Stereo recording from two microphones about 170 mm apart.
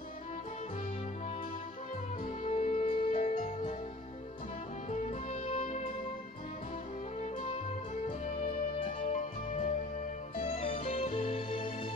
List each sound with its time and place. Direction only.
2.4 s music: 35° left (ahead or behind)
5.3 s music: 35° left (ahead or behind)
8.7 s music: 40° left (ahead or behind)